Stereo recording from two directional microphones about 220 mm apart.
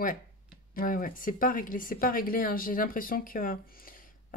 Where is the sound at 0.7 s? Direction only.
40° left (ahead or behind).